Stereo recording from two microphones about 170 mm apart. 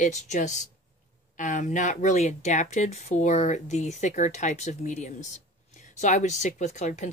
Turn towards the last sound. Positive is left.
turn(degrees=45)  # may be behind; listen again after turning